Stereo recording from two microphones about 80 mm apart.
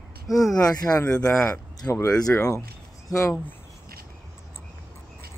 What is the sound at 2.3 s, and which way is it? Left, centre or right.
Speech, left.